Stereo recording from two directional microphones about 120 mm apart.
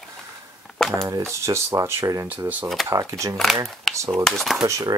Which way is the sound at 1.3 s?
25° right (ahead or behind).